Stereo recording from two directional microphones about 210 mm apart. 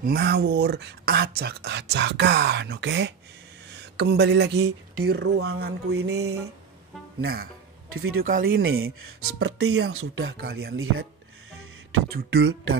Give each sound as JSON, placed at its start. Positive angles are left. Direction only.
{"t": 0.0, "sound": "speech", "side_deg": -50}
{"t": 7.9, "sound": "speech", "side_deg": -80}
{"t": 8.3, "sound": "speech", "side_deg": -45}
{"t": 8.7, "sound": "speech", "side_deg": -80}
{"t": 10.4, "sound": "speech", "side_deg": -50}
{"t": 12.1, "sound": "speech", "side_deg": -50}